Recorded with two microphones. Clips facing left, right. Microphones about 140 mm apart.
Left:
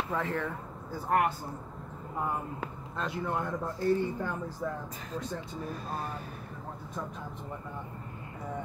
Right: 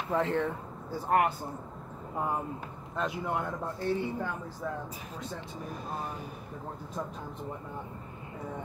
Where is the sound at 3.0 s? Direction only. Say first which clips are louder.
Right 1 dB; 15° right (ahead or behind).